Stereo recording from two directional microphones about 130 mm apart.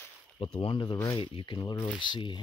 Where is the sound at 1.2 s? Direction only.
40° left (ahead or behind).